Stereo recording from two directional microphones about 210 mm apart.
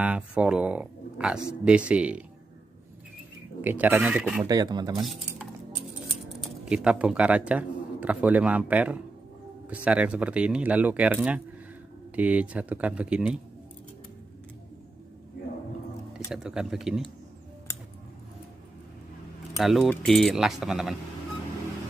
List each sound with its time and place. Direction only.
0.0 s speech: 5° right (ahead or behind)
3.6 s speech: 10° right (ahead or behind)
4.5 s speech: 20° right (ahead or behind)
5.0 s speech: centre (ahead or behind)
16.3 s speech: 5° right (ahead or behind)
19.6 s speech: centre (ahead or behind)